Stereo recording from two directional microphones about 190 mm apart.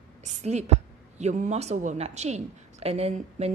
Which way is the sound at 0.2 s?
40° right (ahead or behind).